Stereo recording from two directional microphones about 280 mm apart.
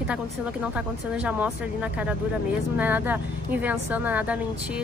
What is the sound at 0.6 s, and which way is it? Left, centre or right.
A woman's voice, centre.